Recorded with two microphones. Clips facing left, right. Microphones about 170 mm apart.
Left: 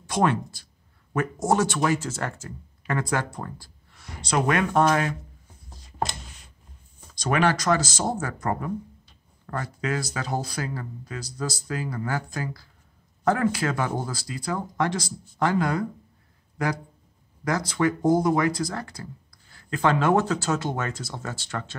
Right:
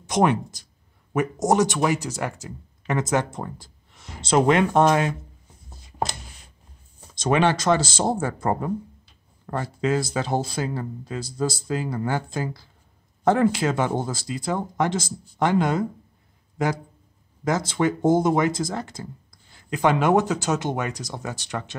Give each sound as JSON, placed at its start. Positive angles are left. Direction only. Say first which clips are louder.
{"t": 0.0, "sound": "speech", "louder": "right 3 dB", "side_deg": -20}
{"t": 7.2, "sound": "speech", "louder": "right 3 dB", "side_deg": -25}